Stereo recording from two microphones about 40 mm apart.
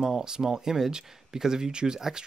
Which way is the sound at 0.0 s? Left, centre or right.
Centre.